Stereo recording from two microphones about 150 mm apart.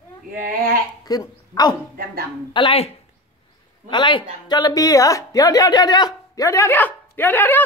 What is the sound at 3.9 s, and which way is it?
A woman's voice, 30° left (ahead or behind).